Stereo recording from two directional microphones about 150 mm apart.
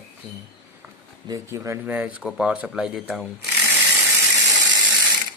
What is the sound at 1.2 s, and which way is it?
Speech, 20° right (ahead or behind).